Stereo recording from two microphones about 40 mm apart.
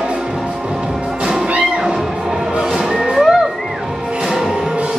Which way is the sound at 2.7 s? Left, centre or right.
Centre.